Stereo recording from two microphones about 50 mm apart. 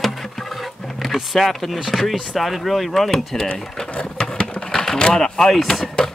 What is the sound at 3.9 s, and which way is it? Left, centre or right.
Sewing machine, left.